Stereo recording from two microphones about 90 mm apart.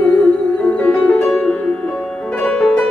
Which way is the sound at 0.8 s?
15° left (ahead or behind).